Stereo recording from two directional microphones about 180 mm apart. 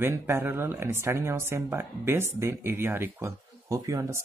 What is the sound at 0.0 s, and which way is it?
Speech, 15° right (ahead or behind).